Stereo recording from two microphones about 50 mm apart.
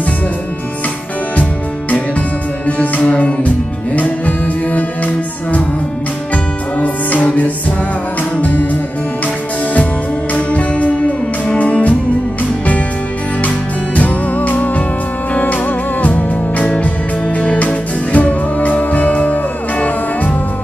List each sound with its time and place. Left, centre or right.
1.3 s music: left
10.3 s music: left
13.9 s music: left